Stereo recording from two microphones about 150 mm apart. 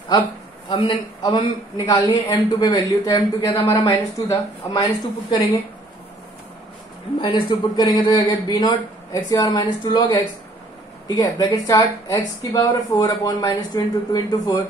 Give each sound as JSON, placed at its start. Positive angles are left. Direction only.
{"t": 0.7, "sound": "speech", "side_deg": 35}
{"t": 7.2, "sound": "speech", "side_deg": 35}